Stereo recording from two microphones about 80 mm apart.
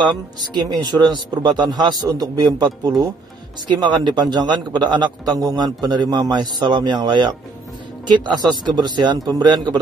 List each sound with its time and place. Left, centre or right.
0.0 s a man's voice: right
3.6 s a man's voice: right